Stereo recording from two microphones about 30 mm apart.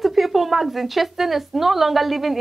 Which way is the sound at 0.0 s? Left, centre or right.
Centre.